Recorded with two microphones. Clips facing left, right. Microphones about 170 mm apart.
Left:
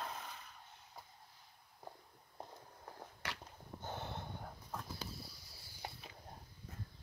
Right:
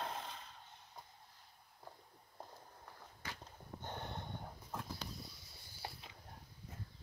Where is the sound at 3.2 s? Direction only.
75° left (ahead or behind).